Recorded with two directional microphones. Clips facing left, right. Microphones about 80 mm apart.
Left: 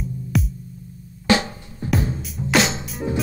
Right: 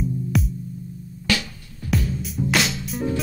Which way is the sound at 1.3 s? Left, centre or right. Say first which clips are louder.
Left 6 dB; left.